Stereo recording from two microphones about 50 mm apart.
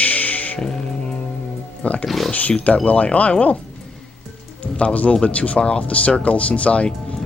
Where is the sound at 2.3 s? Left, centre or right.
Left.